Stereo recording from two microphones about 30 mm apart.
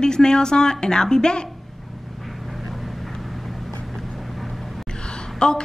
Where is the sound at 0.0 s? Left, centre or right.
Left.